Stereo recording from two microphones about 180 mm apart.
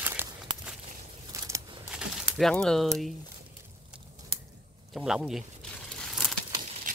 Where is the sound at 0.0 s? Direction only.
10° right (ahead or behind).